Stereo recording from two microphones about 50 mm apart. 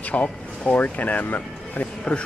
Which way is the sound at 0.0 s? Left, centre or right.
Left.